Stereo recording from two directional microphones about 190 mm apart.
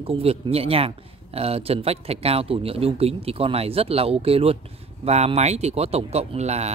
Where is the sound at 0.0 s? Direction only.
30° right (ahead or behind).